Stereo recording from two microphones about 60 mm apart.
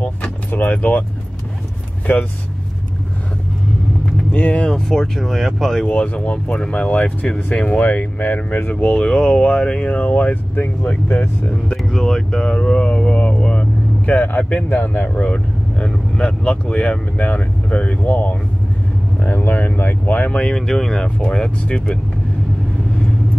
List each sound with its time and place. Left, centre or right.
0.5 s speech: left
4.3 s speech: left
4.6 s speech: centre
5.9 s speech: left
8.6 s speech: centre
10.5 s speech: left
11.7 s speech: centre
12.5 s vehicle: centre
14.1 s speech: left
19.2 s speech: left
20.3 s speech: centre